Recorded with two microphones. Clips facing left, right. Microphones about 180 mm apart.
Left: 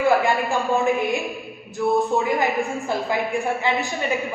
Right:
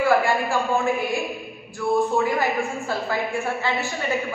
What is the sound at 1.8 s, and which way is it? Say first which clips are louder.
A woman's voice: left 1 dB; 20° left (ahead or behind).